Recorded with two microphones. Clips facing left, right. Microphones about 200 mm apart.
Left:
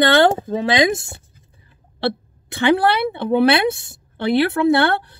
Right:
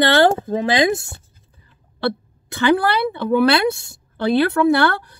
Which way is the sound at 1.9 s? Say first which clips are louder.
Even; 25° left (ahead or behind).